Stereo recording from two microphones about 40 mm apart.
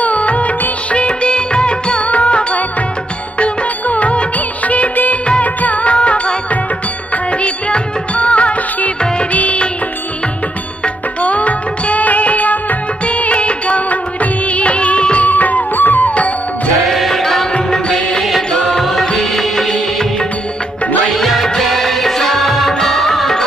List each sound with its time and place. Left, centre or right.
0.0 s music of bollywood: left
0.9 s music: left
3.3 s music of bollywood: left
5.4 s music: left
11.2 s music: left
13.0 s music of bollywood: left
15.2 s music: left
16.9 s music: centre
18.7 s music: centre
21.1 s music: centre